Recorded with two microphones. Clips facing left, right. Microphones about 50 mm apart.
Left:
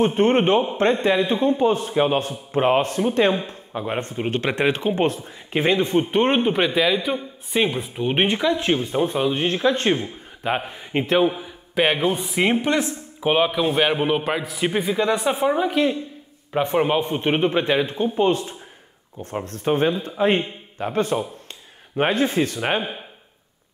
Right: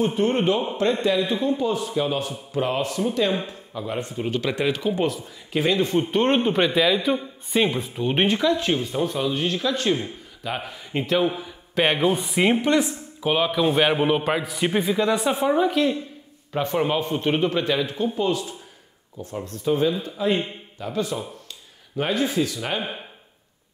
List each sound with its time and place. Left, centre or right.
0.0 s speech: left; by 7.9 s centre
7.9 s speech: centre
11.2 s a sound: centre
11.8 s a man's voice: centre
13.6 s a man's voice: centre; by 22.8 s left